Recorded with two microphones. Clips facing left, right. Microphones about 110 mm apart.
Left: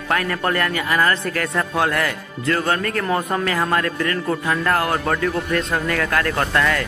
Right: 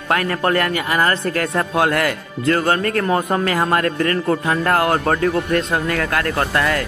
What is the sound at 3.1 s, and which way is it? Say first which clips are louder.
Speech: right 2 dB; 20° right (ahead or behind).